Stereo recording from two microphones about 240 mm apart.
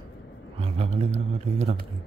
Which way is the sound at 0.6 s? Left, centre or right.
Right.